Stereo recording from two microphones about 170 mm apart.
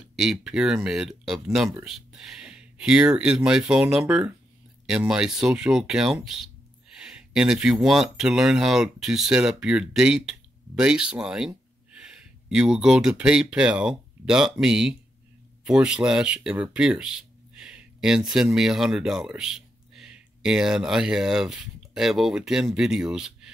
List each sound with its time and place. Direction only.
0.1 s speech: centre (ahead or behind)